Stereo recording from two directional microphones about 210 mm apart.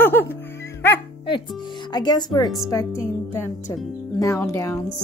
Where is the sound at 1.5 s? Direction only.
20° left (ahead or behind).